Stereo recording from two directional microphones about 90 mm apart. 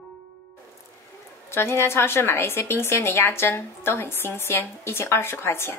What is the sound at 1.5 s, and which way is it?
A woman's voice, 30° left (ahead or behind).